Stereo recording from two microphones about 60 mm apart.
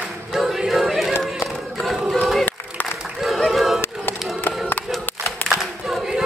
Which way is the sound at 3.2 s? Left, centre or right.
Centre.